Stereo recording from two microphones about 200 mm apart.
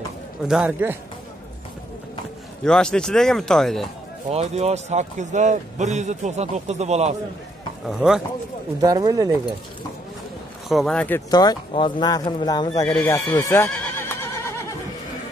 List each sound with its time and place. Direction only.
0.5 s a man's voice: 5° right (ahead or behind)
2.6 s speech: 5° left (ahead or behind)
4.3 s a man's voice: 30° right (ahead or behind)
7.9 s speech: 5° right (ahead or behind)
8.8 s speech: 20° right (ahead or behind)
10.7 s speech: centre (ahead or behind); by 12.8 s 20° left (ahead or behind)
12.8 s speech: 5° left (ahead or behind)
13.7 s neigh: 10° left (ahead or behind)